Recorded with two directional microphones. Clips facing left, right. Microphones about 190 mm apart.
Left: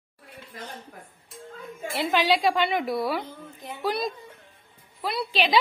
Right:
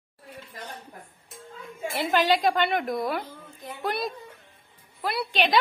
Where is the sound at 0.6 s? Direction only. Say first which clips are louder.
Left 2 dB; 15° right (ahead or behind).